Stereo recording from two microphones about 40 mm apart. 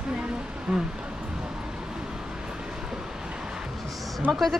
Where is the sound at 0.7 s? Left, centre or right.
Right.